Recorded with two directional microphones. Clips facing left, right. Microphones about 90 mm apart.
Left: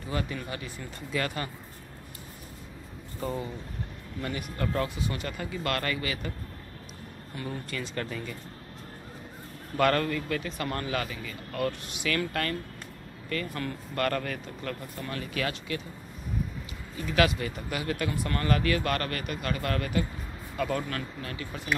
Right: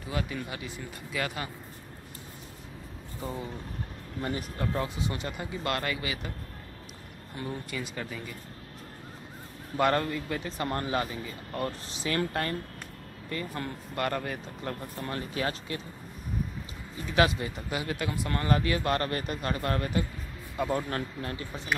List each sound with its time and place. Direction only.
0.1 s speech: 5° right (ahead or behind)
3.2 s speech: centre (ahead or behind)
4.2 s speech: 35° right (ahead or behind)
4.6 s speech: 20° right (ahead or behind)
7.4 s speech: 10° right (ahead or behind)
9.8 s speech: 20° right (ahead or behind)
17.0 s speech: 25° right (ahead or behind)